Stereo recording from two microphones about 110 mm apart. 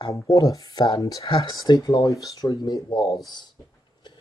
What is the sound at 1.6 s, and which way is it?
Speech, 35° left (ahead or behind).